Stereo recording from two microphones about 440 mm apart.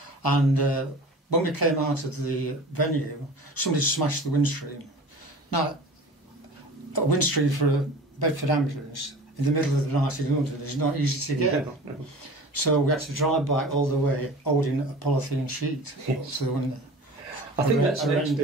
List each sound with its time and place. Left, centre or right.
0.0 s a sound: left
1.3 s speech: left
6.9 s speech: left
12.5 s speech: left
17.9 s a man's voice: centre